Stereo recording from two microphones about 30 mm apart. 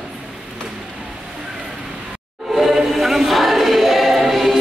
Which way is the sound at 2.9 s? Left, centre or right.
Centre.